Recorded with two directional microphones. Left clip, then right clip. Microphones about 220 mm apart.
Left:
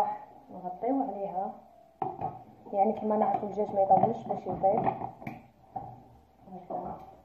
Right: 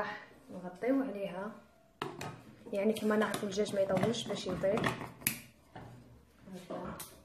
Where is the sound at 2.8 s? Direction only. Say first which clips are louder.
Left 5 dB; 40° right (ahead or behind).